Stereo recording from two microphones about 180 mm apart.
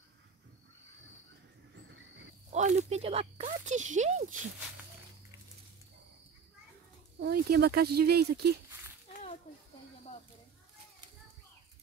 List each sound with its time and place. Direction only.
2.5 s speech: 40° right (ahead or behind)
7.2 s speech: 60° right (ahead or behind)